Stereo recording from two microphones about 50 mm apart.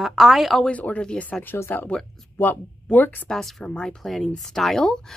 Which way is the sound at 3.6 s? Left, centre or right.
Centre.